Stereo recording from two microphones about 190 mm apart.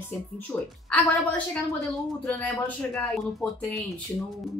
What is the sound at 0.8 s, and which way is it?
A woman's voice, 5° left (ahead or behind).